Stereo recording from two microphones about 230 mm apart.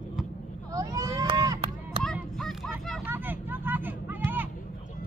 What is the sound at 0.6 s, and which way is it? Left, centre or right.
Vehicle, centre.